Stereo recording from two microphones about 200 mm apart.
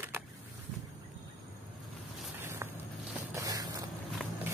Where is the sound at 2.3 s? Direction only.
10° right (ahead or behind).